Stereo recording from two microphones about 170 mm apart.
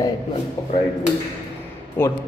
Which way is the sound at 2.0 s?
10° left (ahead or behind).